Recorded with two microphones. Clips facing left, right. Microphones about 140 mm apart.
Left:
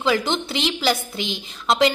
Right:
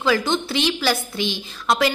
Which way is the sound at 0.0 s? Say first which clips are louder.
Right 1 dB; 20° left (ahead or behind).